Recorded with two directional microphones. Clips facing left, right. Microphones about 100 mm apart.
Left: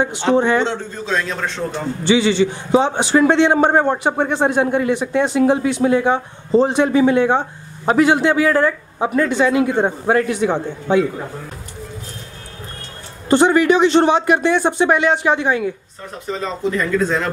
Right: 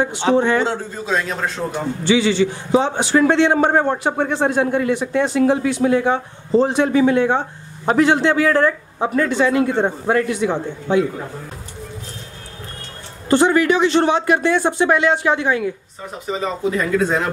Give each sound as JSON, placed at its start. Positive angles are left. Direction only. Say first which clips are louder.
{"t": 0.4, "sound": "a man's voice", "louder": "left 2 dB", "side_deg": 20}
{"t": 0.7, "sound": "a man's voice", "louder": "even", "side_deg": -10}
{"t": 2.0, "sound": "a man's voice", "louder": "left 1 dB", "side_deg": 20}
{"t": 10.1, "sound": "a man's voice", "louder": "left 2 dB", "side_deg": 35}
{"t": 13.3, "sound": "a man's voice", "louder": "left 2 dB", "side_deg": 20}
{"t": 16.3, "sound": "a man's voice", "louder": "even", "side_deg": -10}